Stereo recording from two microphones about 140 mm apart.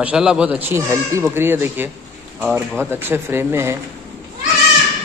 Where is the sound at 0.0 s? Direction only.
5° right (ahead or behind).